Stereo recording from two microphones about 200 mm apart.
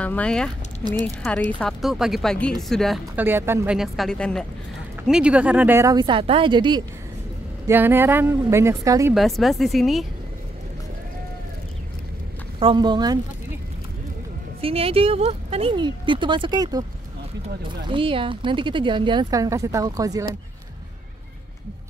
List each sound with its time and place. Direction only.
0.0 s speech: 5° left (ahead or behind)
3.3 s speech: 10° right (ahead or behind)
7.6 s speech: 10° right (ahead or behind)
9.1 s speech: centre (ahead or behind)
12.5 s speech: 25° right (ahead or behind)
14.6 s speech: 30° right (ahead or behind)
17.8 s speech: 25° right (ahead or behind)